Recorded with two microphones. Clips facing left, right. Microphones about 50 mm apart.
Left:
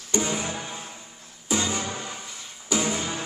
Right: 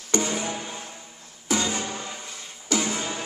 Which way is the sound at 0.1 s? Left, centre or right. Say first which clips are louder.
Right 1 dB; right.